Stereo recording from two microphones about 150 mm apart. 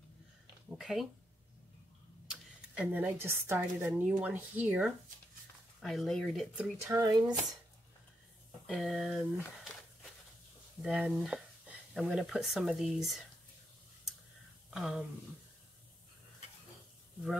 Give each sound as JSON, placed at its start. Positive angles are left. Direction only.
{"t": 0.7, "sound": "speech", "side_deg": 0}
{"t": 2.2, "sound": "speech", "side_deg": -5}
{"t": 5.8, "sound": "speech", "side_deg": 0}
{"t": 6.5, "sound": "speech", "side_deg": -15}
{"t": 8.6, "sound": "a sound", "side_deg": 0}
{"t": 10.8, "sound": "speech", "side_deg": -5}
{"t": 14.7, "sound": "speech", "side_deg": 0}